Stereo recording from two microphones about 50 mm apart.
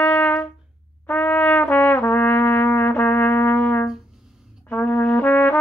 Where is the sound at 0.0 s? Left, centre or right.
Left.